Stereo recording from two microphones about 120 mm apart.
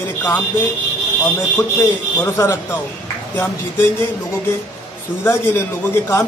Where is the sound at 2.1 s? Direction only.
25° left (ahead or behind).